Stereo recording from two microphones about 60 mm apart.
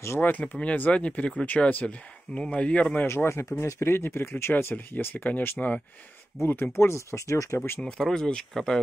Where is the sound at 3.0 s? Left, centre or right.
Left.